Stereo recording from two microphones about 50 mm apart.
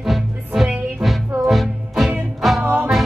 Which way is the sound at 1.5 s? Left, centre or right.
Centre.